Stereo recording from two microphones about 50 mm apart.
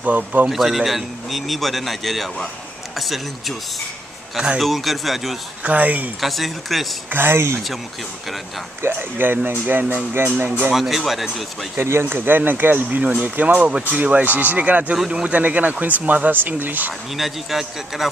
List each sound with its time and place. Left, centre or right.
0.0 s speech: right
0.5 s a man's voice: centre
4.6 s a man's voice: centre
5.6 s speech: right
6.2 s a man's voice: centre
7.1 s speech: right
8.8 s speech: right
10.2 s speech: right
10.7 s a man's voice: centre
11.7 s speech: right
13.9 s speech: right
15.0 s speech: centre
15.3 s speech: right
17.1 s a man's voice: centre